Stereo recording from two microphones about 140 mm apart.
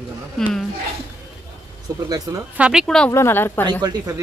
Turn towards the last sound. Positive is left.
turn(degrees=-25)  # may be behind; listen again after turning